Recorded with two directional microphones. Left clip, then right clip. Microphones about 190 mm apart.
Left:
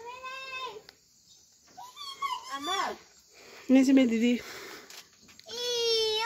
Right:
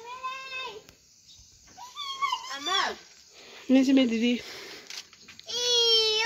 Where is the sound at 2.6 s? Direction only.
45° left (ahead or behind).